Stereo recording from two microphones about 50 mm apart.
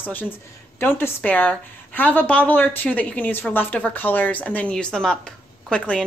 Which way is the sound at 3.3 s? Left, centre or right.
Left.